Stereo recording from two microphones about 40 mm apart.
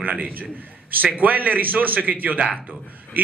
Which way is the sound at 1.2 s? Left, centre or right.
Right.